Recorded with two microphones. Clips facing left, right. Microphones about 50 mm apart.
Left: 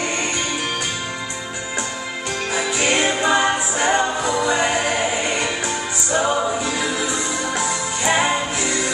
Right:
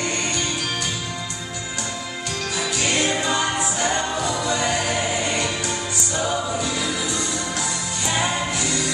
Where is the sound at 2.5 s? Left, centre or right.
Left.